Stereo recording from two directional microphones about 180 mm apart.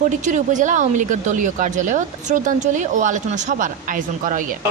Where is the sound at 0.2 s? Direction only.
45° right (ahead or behind).